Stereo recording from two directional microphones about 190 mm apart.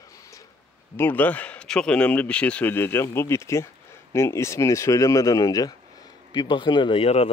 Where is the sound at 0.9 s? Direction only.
10° left (ahead or behind).